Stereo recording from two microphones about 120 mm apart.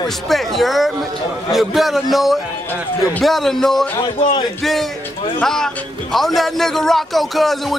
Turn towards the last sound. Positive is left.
turn(degrees=0)  # may be behind; listen again after turning